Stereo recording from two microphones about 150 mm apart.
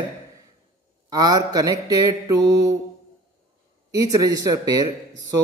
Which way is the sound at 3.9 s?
25° right (ahead or behind).